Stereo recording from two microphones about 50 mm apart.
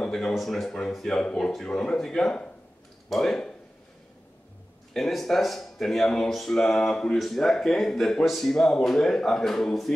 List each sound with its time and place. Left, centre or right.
0.0 s a sound: centre
0.3 s speech: centre
4.9 s speech: centre